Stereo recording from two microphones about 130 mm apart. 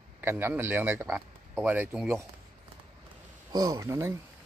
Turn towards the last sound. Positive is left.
turn(degrees=-25)  # may be behind; listen again after turning